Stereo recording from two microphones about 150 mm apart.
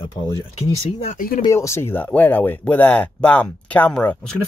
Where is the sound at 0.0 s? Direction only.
25° left (ahead or behind).